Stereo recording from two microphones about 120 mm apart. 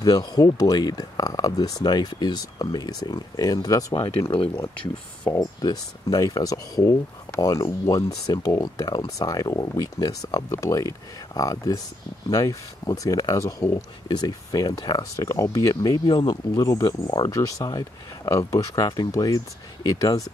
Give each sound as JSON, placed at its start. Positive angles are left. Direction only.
{"t": 0.0, "sound": "speech", "side_deg": 30}
{"t": 5.6, "sound": "speech", "side_deg": 30}